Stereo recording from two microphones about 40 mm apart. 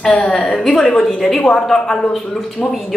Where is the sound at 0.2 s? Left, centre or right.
Centre.